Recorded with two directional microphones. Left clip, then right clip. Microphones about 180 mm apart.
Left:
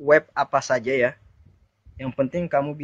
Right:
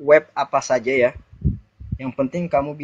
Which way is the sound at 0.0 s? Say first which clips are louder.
Right 3 dB; 20° left (ahead or behind).